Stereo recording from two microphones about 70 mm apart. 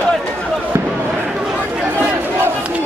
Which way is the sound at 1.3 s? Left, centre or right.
Centre.